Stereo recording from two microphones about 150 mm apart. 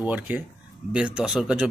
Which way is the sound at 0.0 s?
10° right (ahead or behind).